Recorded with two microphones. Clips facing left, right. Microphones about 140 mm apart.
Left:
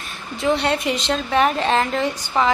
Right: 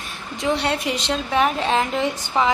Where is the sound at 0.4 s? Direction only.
5° right (ahead or behind).